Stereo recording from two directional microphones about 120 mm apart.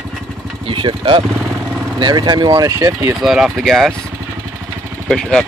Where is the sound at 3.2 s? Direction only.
5° right (ahead or behind).